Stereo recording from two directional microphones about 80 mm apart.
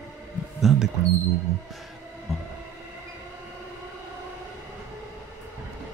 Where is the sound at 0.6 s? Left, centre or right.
Centre.